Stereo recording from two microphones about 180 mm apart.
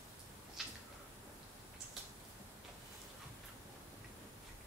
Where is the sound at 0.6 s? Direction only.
Centre (ahead or behind).